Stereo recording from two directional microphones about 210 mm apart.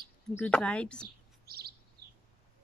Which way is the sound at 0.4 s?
5° left (ahead or behind).